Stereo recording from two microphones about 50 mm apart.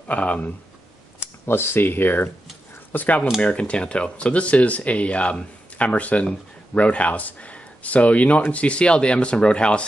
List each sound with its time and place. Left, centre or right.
0.1 s speech: left
1.2 s speech: left
2.9 s speech: left
3.3 s speech: left